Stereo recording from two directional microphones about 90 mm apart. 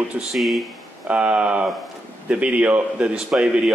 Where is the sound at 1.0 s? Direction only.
15° right (ahead or behind).